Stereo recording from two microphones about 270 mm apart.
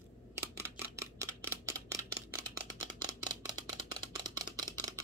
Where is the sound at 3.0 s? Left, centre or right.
Centre.